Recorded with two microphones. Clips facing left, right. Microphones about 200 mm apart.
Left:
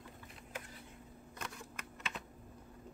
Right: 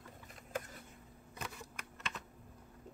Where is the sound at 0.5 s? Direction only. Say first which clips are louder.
Right 6 dB; 50° right (ahead or behind).